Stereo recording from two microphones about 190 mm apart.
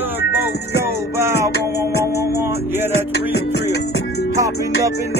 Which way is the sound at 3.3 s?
60° left (ahead or behind).